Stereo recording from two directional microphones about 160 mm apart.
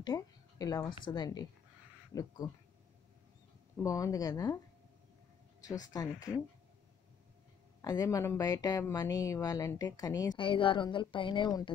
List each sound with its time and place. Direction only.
0.0 s a woman's voice: 25° left (ahead or behind)
3.7 s speech: 20° left (ahead or behind)
5.6 s speech: 25° left (ahead or behind)
7.8 s speech: 20° left (ahead or behind)